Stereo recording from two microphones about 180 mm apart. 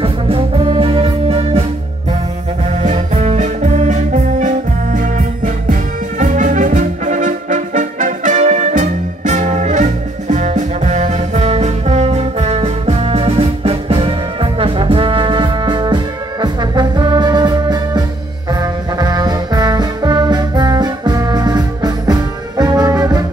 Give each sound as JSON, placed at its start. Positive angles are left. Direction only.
{"t": 0.0, "sound": "music", "side_deg": -30}
{"t": 2.8, "sound": "music", "side_deg": -40}